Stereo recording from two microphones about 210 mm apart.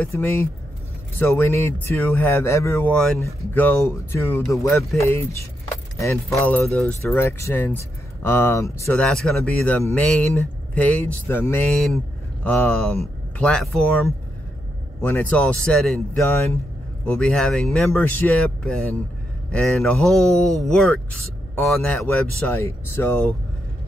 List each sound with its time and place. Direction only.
0.0 s speech: 5° left (ahead or behind)
11.7 s speech: centre (ahead or behind)